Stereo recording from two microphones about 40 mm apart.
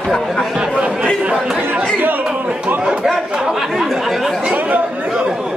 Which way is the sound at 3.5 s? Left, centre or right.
Centre.